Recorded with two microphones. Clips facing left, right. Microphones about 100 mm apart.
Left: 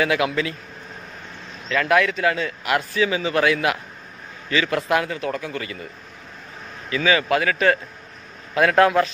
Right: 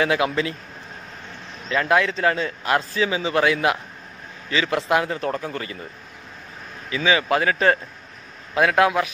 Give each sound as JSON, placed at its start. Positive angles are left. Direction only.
{"t": 0.0, "sound": "a man's voice", "side_deg": -30}
{"t": 1.7, "sound": "a man's voice", "side_deg": -25}
{"t": 6.9, "sound": "a man's voice", "side_deg": -20}
{"t": 8.5, "sound": "a man's voice", "side_deg": -15}